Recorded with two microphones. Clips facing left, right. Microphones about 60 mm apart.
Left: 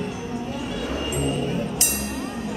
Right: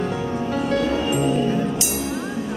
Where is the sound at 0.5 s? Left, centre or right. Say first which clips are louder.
Right 8 dB; right.